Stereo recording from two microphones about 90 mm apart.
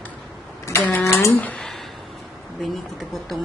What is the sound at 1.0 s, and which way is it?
Cutlery, 35° left (ahead or behind).